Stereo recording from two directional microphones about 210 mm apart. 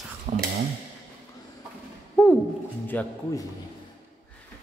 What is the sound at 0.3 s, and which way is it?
Speech, 35° right (ahead or behind).